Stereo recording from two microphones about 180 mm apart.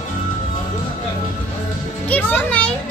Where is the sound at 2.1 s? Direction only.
10° left (ahead or behind).